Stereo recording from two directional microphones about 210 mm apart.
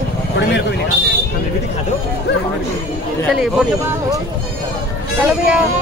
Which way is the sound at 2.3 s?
55° left (ahead or behind).